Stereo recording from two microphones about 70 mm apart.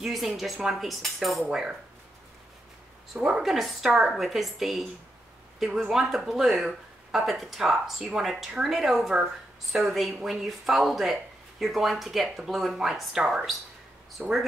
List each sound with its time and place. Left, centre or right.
0.0 s a woman's voice: centre
3.1 s a woman's voice: centre
14.2 s a woman's voice: centre